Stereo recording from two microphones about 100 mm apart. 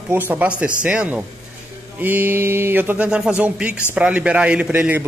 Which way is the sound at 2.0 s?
20° right (ahead or behind).